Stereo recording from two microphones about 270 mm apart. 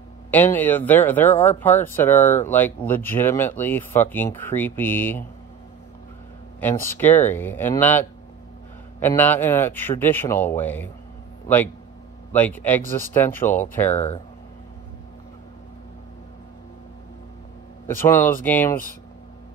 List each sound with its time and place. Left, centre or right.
0.3 s speech: centre
6.6 s a man's voice: centre
13.9 s speech: left
17.8 s speech: centre